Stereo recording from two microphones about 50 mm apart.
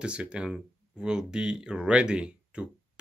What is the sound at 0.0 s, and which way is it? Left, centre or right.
Speech, right.